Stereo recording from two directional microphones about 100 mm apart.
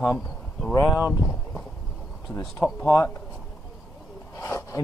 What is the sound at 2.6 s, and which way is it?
Speech, 25° left (ahead or behind).